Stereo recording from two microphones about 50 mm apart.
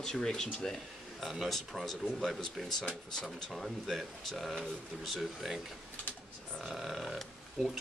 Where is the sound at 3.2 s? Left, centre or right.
Centre.